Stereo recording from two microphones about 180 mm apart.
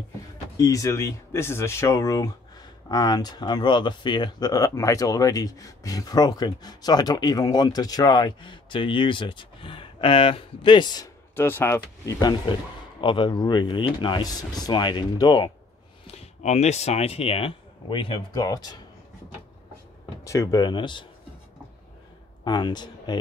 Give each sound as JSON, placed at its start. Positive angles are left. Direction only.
{"t": 0.6, "sound": "speech", "side_deg": 20}
{"t": 11.3, "sound": "speech", "side_deg": 10}
{"t": 16.1, "sound": "speech", "side_deg": 35}
{"t": 20.2, "sound": "speech", "side_deg": 20}
{"t": 22.4, "sound": "speech", "side_deg": 25}